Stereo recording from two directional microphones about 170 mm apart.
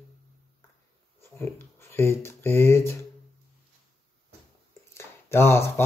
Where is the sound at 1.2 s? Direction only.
15° left (ahead or behind).